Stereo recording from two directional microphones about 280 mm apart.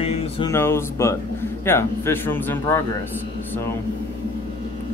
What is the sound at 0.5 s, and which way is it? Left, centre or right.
Speech, centre.